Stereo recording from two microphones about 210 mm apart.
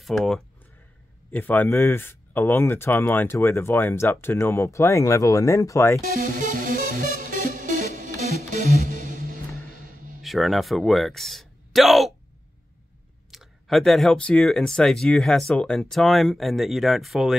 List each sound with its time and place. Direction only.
0.0 s speech: centre (ahead or behind)
6.5 s music: 40° right (ahead or behind)
10.2 s speech: centre (ahead or behind)
13.3 s speech: centre (ahead or behind)